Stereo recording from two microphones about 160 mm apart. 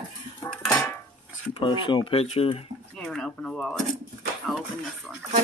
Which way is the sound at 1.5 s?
30° left (ahead or behind).